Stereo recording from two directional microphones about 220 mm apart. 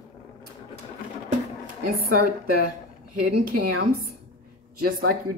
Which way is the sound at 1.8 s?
40° right (ahead or behind).